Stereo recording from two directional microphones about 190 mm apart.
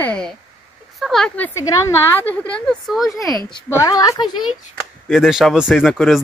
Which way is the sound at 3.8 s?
20° left (ahead or behind).